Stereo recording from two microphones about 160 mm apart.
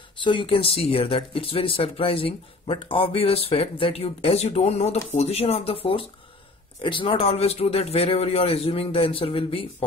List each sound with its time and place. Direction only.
0.2 s speech: 30° left (ahead or behind)